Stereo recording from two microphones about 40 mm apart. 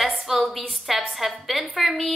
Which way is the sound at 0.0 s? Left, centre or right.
Centre.